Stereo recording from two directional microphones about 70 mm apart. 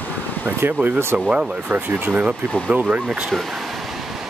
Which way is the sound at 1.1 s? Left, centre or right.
Centre.